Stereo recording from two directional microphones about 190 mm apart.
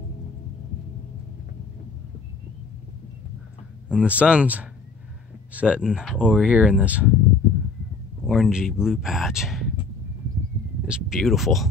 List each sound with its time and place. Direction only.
3.9 s speech: 5° right (ahead or behind)
8.3 s speech: 5° right (ahead or behind)
10.9 s speech: centre (ahead or behind)